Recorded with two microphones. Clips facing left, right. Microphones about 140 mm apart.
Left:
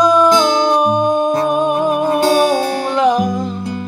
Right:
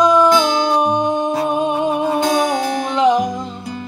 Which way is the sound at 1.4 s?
20° right (ahead or behind).